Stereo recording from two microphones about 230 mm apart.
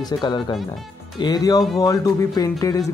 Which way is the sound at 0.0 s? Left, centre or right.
Centre.